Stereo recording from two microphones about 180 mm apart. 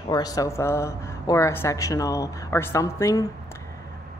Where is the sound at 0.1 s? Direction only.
20° left (ahead or behind).